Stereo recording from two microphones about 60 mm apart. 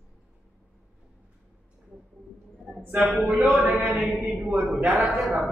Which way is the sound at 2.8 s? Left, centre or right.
Centre.